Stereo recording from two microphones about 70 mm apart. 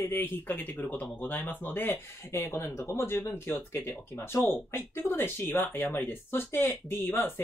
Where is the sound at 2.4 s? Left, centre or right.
Left.